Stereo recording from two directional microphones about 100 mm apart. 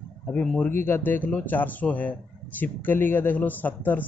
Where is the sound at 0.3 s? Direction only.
10° left (ahead or behind).